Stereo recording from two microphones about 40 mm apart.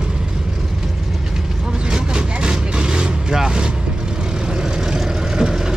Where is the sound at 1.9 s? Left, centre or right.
Right.